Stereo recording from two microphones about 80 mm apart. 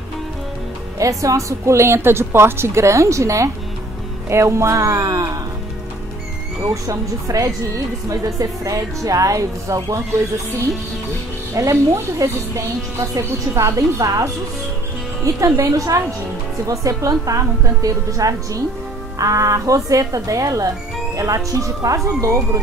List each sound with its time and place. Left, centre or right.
0.9 s a woman's voice: right
6.7 s speech: right
11.5 s a woman's voice: right